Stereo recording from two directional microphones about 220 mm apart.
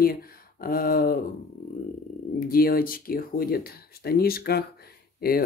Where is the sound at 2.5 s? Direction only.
40° left (ahead or behind).